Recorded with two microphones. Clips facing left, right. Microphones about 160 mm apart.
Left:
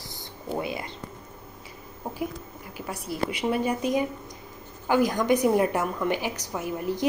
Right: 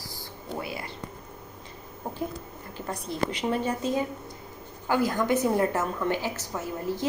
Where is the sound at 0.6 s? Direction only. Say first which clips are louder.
Left 4 dB; 20° left (ahead or behind).